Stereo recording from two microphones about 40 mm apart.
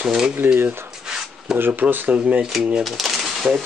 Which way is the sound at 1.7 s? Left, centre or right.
Right.